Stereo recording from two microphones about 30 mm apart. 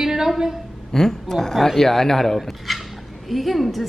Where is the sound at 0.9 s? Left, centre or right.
Centre.